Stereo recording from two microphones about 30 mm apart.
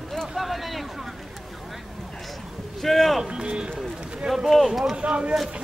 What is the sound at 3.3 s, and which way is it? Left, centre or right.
Speech, right.